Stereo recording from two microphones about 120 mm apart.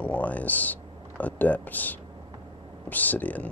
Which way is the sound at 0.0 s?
15° left (ahead or behind).